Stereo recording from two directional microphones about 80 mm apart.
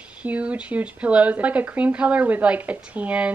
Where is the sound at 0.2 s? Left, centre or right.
Centre.